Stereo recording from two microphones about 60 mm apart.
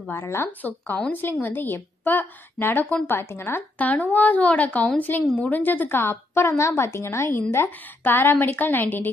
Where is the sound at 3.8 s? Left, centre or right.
Left.